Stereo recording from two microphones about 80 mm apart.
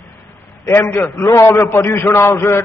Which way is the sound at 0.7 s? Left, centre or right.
Left.